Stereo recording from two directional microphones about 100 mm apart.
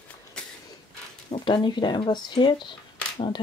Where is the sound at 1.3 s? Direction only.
50° left (ahead or behind).